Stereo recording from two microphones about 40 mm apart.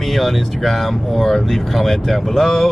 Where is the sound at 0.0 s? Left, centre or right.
Centre.